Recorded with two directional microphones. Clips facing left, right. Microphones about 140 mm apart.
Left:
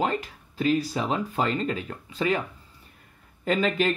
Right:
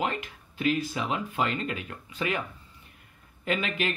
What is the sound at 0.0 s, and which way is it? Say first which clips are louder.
Speech: left 4 dB; 35° left (ahead or behind).